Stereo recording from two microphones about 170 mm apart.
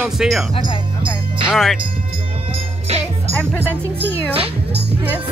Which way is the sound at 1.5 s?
Centre (ahead or behind).